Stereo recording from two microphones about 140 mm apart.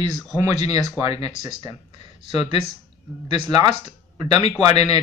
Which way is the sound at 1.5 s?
30° right (ahead or behind).